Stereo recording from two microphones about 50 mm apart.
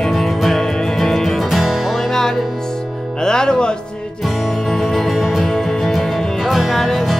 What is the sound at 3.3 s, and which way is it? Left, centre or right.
Music, centre.